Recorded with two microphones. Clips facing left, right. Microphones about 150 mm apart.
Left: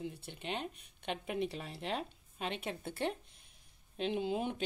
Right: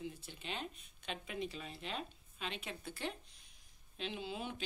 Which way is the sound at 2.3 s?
55° left (ahead or behind).